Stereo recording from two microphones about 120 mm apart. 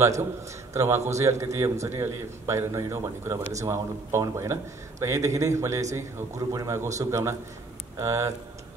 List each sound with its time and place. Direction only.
0.0 s a man's voice: 25° right (ahead or behind)